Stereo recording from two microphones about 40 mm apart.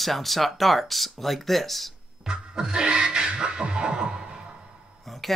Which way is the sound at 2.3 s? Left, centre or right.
Right.